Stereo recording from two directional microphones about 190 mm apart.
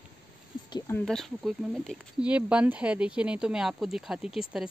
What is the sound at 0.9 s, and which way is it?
Speech, centre (ahead or behind).